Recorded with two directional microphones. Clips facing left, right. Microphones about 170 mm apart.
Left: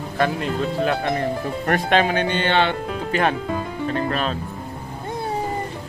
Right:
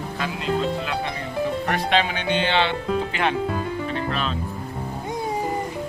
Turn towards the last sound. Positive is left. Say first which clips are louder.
# left 3 dB
turn(degrees=45)  # may be behind; listen again after turning